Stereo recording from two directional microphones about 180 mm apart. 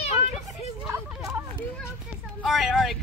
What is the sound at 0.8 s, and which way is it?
Hubbub, 15° right (ahead or behind).